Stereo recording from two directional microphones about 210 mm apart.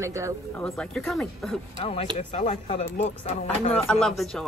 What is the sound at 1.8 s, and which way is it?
Speech, 25° left (ahead or behind).